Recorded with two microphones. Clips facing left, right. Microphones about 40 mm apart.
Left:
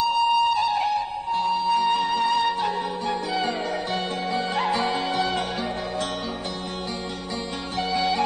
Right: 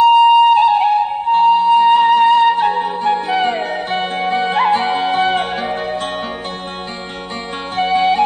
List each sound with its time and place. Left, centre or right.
0.0 s music: right
7.7 s music: right